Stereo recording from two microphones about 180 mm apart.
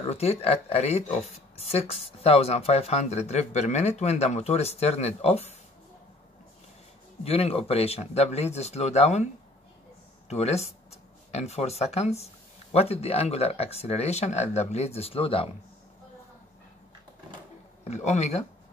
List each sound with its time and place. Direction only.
0.1 s speech: 35° left (ahead or behind)
7.2 s speech: 35° left (ahead or behind)
10.3 s speech: 35° left (ahead or behind)
17.8 s speech: 40° left (ahead or behind)